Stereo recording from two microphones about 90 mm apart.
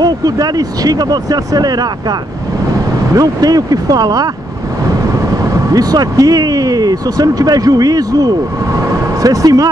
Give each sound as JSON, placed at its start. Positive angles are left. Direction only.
{"t": 0.0, "sound": "speech", "side_deg": -45}
{"t": 3.2, "sound": "speech", "side_deg": -45}
{"t": 5.7, "sound": "speech", "side_deg": -45}